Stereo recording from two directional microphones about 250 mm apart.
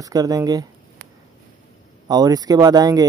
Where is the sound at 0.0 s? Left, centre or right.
Centre.